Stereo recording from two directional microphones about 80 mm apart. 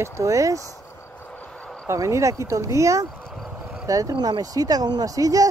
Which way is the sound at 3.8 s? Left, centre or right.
Right.